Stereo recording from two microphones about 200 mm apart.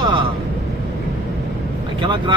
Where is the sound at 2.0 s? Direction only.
25° right (ahead or behind).